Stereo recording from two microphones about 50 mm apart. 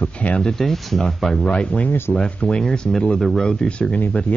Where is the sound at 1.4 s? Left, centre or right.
Left; by 3.5 s centre.